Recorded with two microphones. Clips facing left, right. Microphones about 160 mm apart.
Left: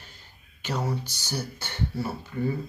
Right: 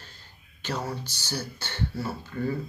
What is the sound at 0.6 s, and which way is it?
Speech, 15° left (ahead or behind).